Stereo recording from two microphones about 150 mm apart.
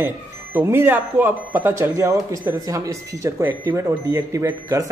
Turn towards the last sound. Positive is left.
turn(degrees=-20)  # may be behind; listen again after turning